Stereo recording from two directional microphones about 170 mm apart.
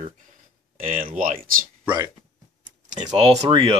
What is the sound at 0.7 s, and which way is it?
Speech, 50° right (ahead or behind).